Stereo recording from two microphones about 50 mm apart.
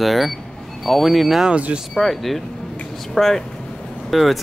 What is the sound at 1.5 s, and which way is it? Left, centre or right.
Speech, right.